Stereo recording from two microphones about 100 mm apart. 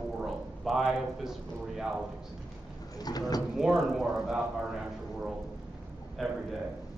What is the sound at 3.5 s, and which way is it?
A man's voice, 5° right (ahead or behind).